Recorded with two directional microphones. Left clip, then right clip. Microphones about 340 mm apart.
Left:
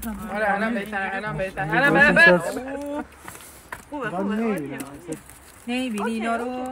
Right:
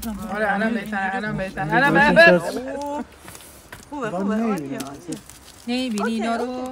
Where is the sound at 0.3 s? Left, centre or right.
Right.